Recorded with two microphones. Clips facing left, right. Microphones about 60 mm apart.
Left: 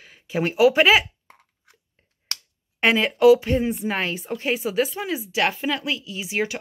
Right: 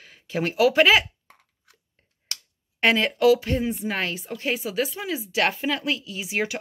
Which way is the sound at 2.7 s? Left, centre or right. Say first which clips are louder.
Left 1 dB; centre.